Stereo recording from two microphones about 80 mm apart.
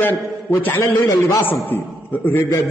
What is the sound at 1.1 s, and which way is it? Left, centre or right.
Speech, left.